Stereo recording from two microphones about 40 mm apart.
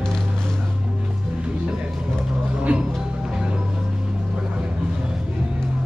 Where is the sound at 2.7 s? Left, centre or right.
Right.